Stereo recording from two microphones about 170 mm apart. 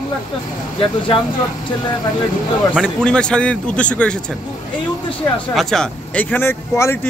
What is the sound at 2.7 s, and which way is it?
Speech, 5° left (ahead or behind).